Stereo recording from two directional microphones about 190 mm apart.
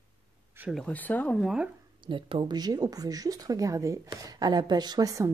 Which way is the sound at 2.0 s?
25° right (ahead or behind).